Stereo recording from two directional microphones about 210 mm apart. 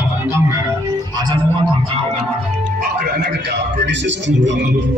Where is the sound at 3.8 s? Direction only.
60° right (ahead or behind).